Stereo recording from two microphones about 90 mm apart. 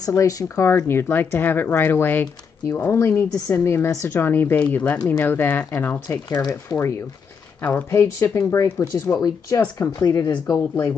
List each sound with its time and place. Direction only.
0.0 s speech: 40° left (ahead or behind)
0.7 s speech: 25° left (ahead or behind)
6.0 s speech: 40° left (ahead or behind)
7.6 s speech: 20° left (ahead or behind)
8.5 s speech: 30° left (ahead or behind)
9.0 s speech: 40° left (ahead or behind)
10.4 s speech: 35° left (ahead or behind)